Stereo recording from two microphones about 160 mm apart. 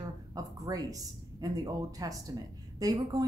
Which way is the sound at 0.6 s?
20° right (ahead or behind).